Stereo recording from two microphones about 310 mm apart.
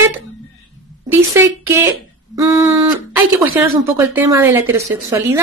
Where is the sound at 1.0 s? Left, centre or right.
Centre.